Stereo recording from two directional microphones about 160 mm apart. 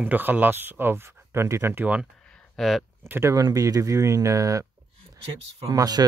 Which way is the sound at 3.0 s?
15° right (ahead or behind).